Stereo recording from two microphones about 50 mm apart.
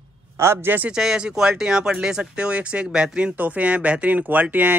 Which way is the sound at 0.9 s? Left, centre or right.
Centre.